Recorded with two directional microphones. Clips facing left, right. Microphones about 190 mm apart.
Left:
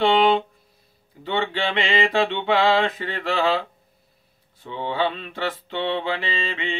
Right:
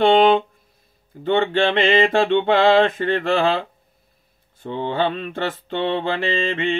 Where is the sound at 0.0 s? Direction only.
50° right (ahead or behind).